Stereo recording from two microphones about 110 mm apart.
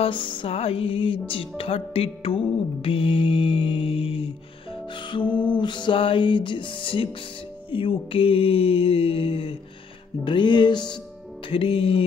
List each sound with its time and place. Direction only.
0.0 s mantra: 50° left (ahead or behind)
1.6 s music: 60° left (ahead or behind)
7.7 s mantra: 55° left (ahead or behind)
10.2 s music: 45° left (ahead or behind)
11.4 s mantra: 55° left (ahead or behind)